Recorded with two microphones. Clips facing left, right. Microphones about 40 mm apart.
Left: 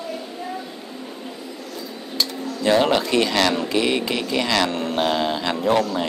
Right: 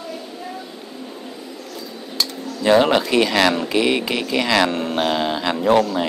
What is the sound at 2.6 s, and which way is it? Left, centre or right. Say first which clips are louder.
Speech: right 3 dB; centre.